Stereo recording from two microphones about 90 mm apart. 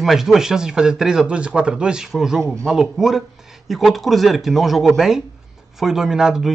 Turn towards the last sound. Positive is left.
turn(degrees=-5)  # may be behind; listen again after turning